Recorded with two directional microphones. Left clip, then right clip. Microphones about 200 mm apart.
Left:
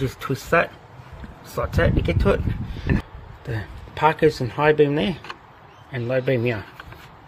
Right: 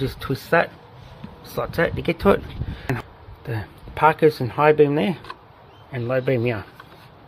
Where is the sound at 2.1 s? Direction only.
15° right (ahead or behind).